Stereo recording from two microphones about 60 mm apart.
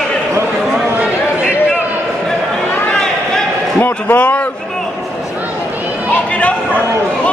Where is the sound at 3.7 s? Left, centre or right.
Left.